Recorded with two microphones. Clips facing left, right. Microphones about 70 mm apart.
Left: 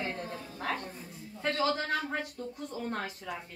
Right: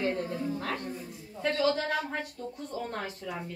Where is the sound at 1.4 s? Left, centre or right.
Left.